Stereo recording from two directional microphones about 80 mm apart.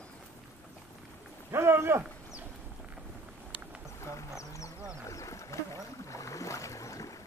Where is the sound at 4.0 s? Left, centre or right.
Left.